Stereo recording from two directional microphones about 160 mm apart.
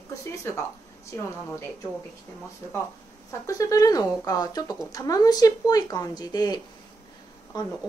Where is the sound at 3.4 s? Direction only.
20° left (ahead or behind).